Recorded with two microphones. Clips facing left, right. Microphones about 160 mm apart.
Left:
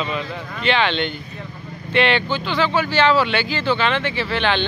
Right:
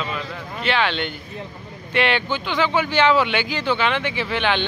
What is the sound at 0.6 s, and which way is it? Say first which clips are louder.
Speech: left 2 dB; 5° right (ahead or behind).